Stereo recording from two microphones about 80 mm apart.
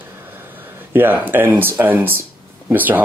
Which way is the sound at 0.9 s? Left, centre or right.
Right.